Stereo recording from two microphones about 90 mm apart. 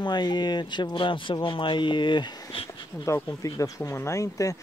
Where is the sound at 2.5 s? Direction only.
90° left.